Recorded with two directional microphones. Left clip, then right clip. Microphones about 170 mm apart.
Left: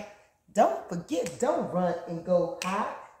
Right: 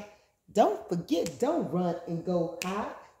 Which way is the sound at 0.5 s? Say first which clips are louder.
Left 1 dB; 40° right (ahead or behind).